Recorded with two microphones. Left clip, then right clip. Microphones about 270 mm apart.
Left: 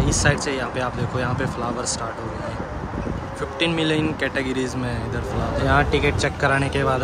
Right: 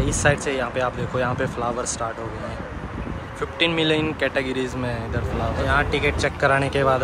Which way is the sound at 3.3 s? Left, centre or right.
Centre.